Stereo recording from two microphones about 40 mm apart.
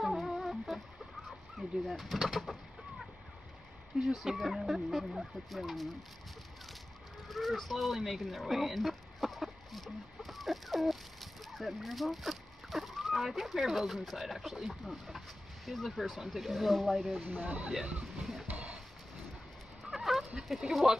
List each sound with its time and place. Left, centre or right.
0.0 s music: centre
1.6 s speech: centre
4.0 s speech: centre
7.2 s speech: centre
17.3 s speech: right
18.1 s music: centre
19.9 s a sound: centre
20.7 s speech: centre